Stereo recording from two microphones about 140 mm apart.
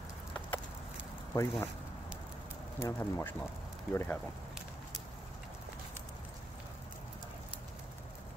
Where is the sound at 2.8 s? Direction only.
15° left (ahead or behind).